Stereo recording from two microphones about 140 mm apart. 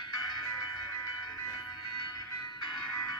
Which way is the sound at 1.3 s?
30° left (ahead or behind).